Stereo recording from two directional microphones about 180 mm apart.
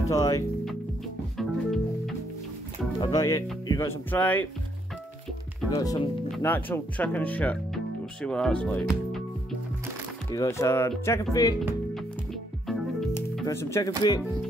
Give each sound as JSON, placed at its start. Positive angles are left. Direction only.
{"t": 0.1, "sound": "speech", "side_deg": 20}
{"t": 1.4, "sound": "music", "side_deg": 0}
{"t": 3.0, "sound": "speech", "side_deg": 20}
{"t": 5.7, "sound": "speech", "side_deg": 20}
{"t": 10.3, "sound": "speech", "side_deg": 20}
{"t": 13.1, "sound": "speech", "side_deg": 15}